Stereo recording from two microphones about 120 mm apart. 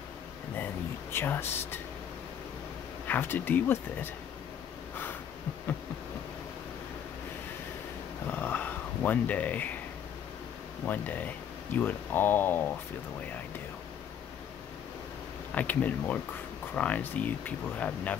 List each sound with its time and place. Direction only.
1.1 s speech: 20° left (ahead or behind)
3.1 s speech: 15° left (ahead or behind)
8.3 s a sound: 15° left (ahead or behind)
10.9 s speech: 15° left (ahead or behind)
15.5 s speech: 15° left (ahead or behind)